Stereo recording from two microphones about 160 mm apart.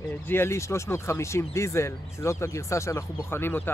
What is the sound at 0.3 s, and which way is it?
Speech, 15° left (ahead or behind).